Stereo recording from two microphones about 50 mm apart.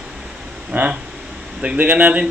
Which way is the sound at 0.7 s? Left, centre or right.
Right.